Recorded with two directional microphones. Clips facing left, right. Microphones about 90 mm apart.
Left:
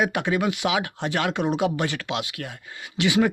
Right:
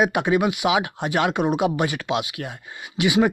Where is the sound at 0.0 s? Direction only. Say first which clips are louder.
Right 4 dB; 20° right (ahead or behind).